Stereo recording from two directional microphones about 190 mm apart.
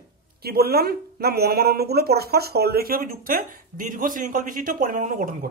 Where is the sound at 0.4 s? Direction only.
55° right (ahead or behind).